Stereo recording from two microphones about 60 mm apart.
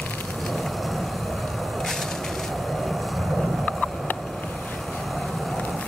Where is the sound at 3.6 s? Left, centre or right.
Left.